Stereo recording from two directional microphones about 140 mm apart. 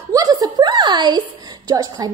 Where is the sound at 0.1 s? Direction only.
25° right (ahead or behind).